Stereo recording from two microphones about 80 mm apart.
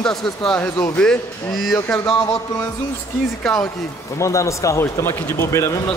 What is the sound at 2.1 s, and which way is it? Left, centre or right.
Speech, left.